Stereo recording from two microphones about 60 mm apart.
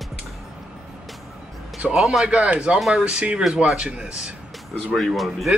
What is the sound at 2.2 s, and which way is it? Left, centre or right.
Speech, centre.